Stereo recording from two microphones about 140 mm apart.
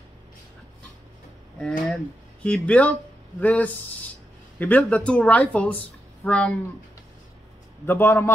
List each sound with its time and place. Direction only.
1.6 s speech: 5° left (ahead or behind)
7.8 s speech: 15° left (ahead or behind)